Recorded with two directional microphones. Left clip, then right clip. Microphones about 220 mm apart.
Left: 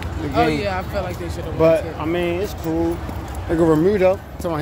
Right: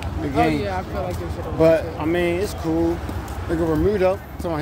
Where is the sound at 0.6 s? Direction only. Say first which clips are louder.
Left 2 dB; 55° left (ahead or behind).